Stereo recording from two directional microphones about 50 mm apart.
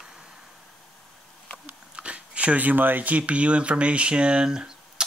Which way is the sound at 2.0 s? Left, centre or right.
Right.